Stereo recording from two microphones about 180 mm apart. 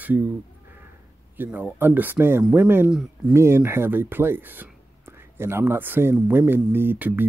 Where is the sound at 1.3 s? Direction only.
10° right (ahead or behind).